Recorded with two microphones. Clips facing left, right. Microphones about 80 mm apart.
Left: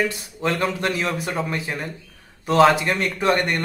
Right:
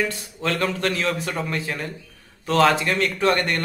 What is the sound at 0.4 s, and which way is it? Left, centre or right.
Speech, centre.